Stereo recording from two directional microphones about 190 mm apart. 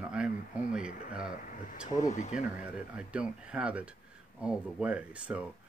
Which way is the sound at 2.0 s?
40° left (ahead or behind).